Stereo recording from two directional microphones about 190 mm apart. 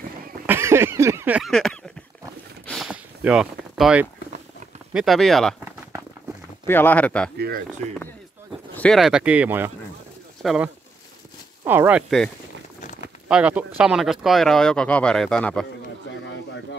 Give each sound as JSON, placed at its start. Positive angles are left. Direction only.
{"t": 0.5, "sound": "a sound", "side_deg": -15}
{"t": 1.5, "sound": "a sound", "side_deg": 5}
{"t": 4.9, "sound": "speech", "side_deg": 0}
{"t": 6.6, "sound": "speech", "side_deg": 10}
{"t": 7.3, "sound": "speech", "side_deg": -55}
{"t": 8.7, "sound": "speech", "side_deg": 5}
{"t": 13.3, "sound": "speech", "side_deg": -5}